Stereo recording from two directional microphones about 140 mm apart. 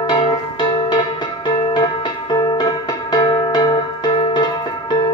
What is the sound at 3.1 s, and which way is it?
Music, 30° left (ahead or behind).